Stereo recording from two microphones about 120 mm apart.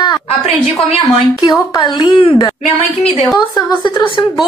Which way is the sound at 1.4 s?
35° left (ahead or behind).